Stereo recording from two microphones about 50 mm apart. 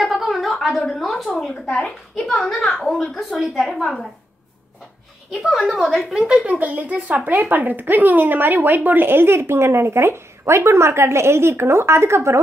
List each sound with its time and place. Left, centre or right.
0.0 s a sound: centre
0.8 s a woman's voice: centre
1.8 s a child's voice: left
2.2 s a woman's voice: centre
5.5 s a woman's voice: centre
6.2 s a woman's voice: right